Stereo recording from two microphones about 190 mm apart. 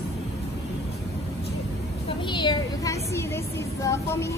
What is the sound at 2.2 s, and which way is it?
A woman's voice, 25° left (ahead or behind).